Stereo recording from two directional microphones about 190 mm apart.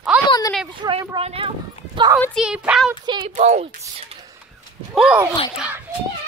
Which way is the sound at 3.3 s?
35° right (ahead or behind).